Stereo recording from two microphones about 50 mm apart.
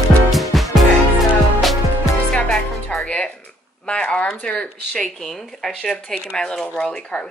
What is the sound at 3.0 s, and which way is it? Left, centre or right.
Music, left.